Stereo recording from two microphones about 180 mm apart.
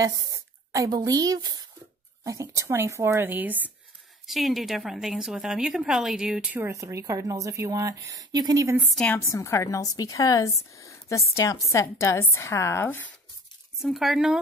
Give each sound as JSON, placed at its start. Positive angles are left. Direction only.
{"t": 0.0, "sound": "a woman's voice", "side_deg": -20}
{"t": 8.9, "sound": "a woman's voice", "side_deg": 10}
{"t": 13.7, "sound": "speech", "side_deg": 0}